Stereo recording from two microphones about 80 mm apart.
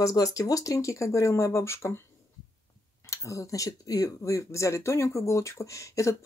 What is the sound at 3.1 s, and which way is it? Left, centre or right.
Speech, left.